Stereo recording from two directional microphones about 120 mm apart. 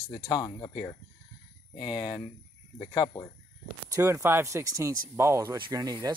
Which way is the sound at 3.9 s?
25° right (ahead or behind).